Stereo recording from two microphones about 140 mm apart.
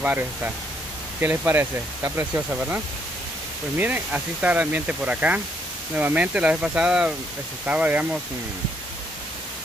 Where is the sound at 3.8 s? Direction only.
10° right (ahead or behind).